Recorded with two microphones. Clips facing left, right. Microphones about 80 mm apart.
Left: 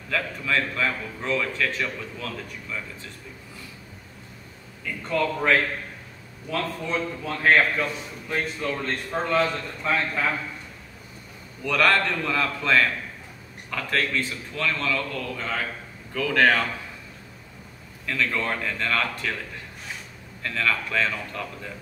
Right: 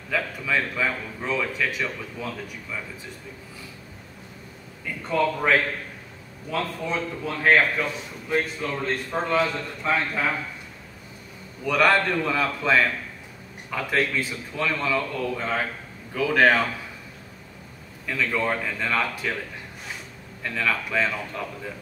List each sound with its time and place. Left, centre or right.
0.1 s a man's voice: centre
5.0 s a man's voice: centre
11.6 s a man's voice: centre
18.0 s a man's voice: centre
20.4 s a man's voice: centre